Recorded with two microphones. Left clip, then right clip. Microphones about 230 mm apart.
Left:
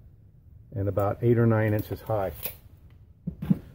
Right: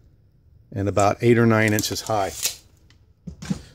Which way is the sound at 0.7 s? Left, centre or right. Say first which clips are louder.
Right 8 dB; right.